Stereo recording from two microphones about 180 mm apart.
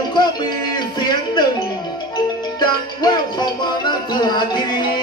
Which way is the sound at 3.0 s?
25° left (ahead or behind).